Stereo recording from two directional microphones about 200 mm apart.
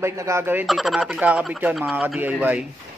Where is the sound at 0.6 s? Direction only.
Centre (ahead or behind).